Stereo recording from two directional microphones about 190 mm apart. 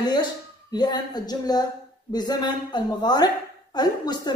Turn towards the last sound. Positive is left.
turn(degrees=20)  # may be behind; listen again after turning